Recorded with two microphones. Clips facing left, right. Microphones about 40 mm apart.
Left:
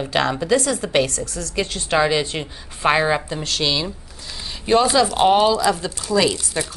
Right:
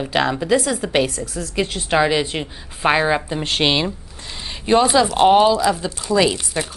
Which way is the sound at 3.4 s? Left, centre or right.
Right.